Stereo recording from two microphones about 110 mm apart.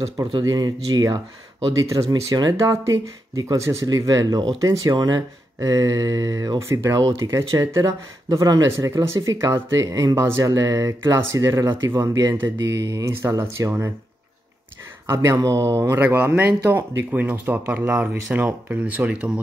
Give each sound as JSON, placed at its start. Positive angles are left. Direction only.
{"t": 0.4, "sound": "speech", "side_deg": -35}
{"t": 15.3, "sound": "speech", "side_deg": -30}